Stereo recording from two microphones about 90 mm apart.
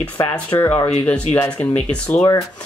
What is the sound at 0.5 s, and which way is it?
Speech, 50° left (ahead or behind).